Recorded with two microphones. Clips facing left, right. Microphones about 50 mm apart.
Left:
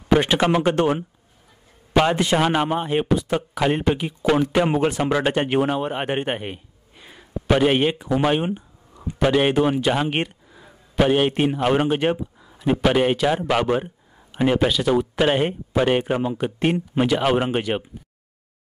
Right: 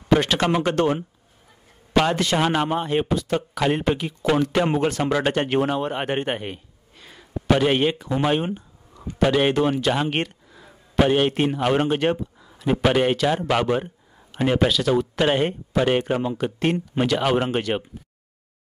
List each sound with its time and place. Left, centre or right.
0.1 s speech: centre